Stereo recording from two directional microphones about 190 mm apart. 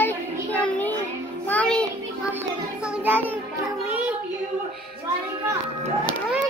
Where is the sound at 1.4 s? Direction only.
5° left (ahead or behind).